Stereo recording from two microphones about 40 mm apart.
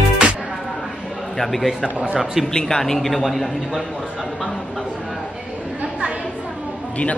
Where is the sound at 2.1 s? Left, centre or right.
Centre.